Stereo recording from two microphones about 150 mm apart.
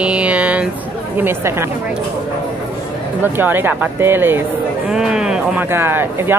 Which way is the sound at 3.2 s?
15° right (ahead or behind).